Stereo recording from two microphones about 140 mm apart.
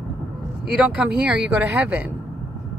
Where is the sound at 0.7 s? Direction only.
10° right (ahead or behind).